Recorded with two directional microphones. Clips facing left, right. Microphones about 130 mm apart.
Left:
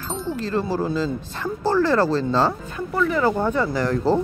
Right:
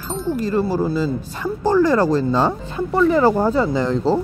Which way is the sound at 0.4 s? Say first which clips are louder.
Right 4 dB; 10° right (ahead or behind).